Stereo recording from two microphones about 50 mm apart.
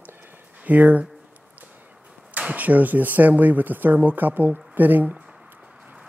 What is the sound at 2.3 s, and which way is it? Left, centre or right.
Speech, right.